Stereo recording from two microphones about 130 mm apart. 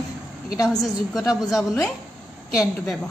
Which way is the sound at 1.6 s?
Centre (ahead or behind).